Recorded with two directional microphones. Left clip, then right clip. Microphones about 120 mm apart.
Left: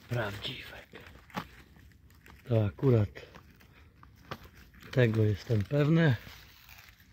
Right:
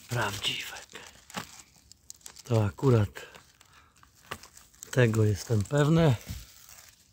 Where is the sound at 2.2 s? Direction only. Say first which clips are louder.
Right 2 dB; 20° right (ahead or behind).